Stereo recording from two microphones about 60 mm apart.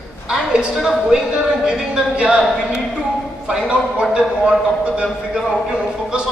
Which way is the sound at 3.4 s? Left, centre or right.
Centre.